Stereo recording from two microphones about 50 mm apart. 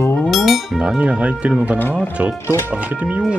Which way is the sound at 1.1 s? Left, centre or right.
Right.